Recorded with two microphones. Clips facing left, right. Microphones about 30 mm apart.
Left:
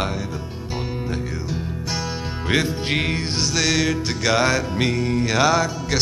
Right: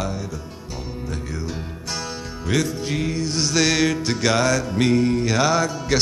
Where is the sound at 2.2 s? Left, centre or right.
Left.